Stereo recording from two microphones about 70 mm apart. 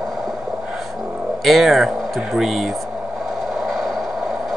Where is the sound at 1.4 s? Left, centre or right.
Centre.